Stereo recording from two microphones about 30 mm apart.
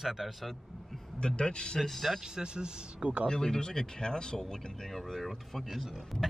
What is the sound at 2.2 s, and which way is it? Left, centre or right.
Speech, right.